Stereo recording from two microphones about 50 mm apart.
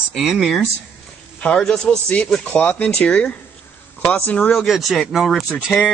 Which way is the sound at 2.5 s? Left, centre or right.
Left.